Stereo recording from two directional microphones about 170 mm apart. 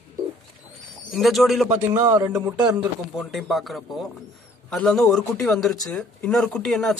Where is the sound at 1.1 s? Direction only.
Centre (ahead or behind).